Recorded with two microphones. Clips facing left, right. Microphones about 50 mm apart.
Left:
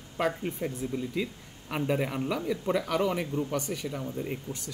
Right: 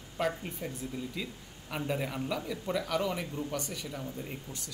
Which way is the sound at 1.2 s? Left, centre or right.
Left.